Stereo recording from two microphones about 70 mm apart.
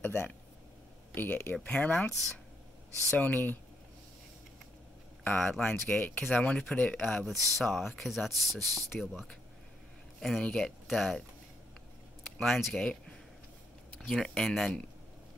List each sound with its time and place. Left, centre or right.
0.0 s speech: left
3.2 s speech: left
5.2 s speech: centre
7.2 s speech: centre
10.4 s speech: centre
12.4 s speech: centre